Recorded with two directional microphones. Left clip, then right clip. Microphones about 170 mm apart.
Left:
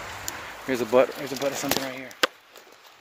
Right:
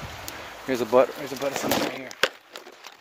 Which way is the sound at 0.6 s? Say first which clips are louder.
Right 1 dB; 15° left (ahead or behind).